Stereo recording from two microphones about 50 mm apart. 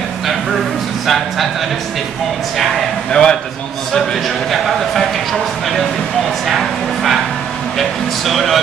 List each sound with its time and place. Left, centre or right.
1.0 s a man's voice: centre
3.1 s a man's voice: centre
4.5 s a man's voice: centre
6.4 s a sound: centre
8.3 s a man's voice: centre